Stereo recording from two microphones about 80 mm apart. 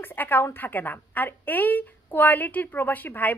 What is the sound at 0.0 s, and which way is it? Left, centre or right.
A woman's voice, left.